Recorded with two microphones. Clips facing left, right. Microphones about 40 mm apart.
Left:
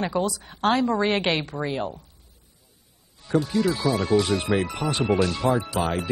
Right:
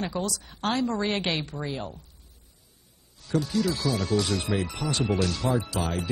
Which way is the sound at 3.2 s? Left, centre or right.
Left.